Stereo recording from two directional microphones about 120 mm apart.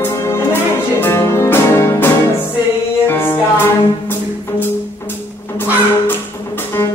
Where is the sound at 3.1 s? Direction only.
20° left (ahead or behind).